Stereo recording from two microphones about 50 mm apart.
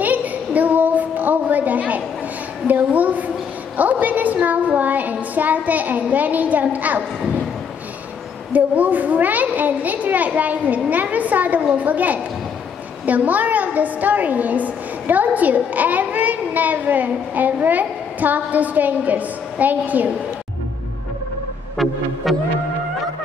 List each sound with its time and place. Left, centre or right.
0.0 s a sound: right
3.7 s child singing: right
8.5 s a woman's voice: right
22.2 s music: centre